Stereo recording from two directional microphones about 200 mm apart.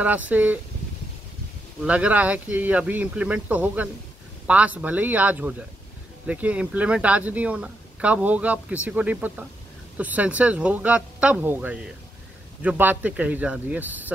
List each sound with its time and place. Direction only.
0.0 s speech: 10° right (ahead or behind)
1.9 s speech: 5° right (ahead or behind)